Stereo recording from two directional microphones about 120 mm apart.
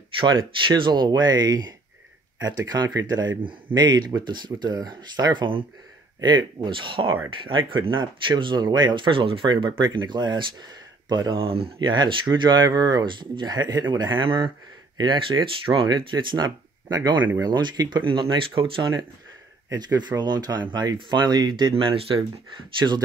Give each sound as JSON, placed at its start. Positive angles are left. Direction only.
{"t": 0.2, "sound": "speech", "side_deg": -45}
{"t": 11.3, "sound": "speech", "side_deg": -50}